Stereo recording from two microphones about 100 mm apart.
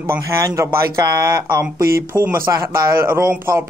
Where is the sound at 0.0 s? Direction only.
25° right (ahead or behind).